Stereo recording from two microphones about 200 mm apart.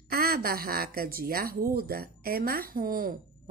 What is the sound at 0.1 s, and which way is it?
A woman's voice, 50° right (ahead or behind).